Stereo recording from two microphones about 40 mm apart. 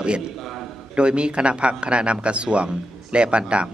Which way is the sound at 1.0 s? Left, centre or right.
Right.